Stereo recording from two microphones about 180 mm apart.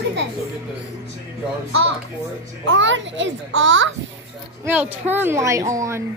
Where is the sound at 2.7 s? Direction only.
90° right.